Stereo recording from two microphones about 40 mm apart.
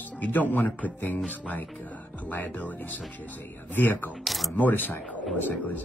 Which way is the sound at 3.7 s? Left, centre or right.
Left.